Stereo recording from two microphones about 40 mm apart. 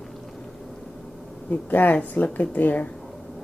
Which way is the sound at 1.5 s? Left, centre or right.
Left.